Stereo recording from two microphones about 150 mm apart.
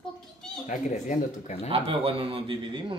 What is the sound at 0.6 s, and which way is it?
Speech, 55° left (ahead or behind).